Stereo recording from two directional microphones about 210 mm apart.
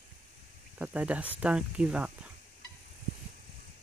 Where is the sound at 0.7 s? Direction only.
5° right (ahead or behind).